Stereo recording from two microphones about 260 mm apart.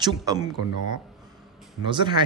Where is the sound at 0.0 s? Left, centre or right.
Centre.